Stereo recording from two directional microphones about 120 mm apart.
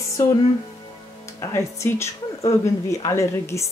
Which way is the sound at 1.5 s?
25° left (ahead or behind).